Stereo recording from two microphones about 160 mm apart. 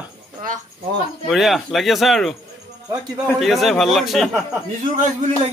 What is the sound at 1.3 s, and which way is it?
A man's voice, centre (ahead or behind).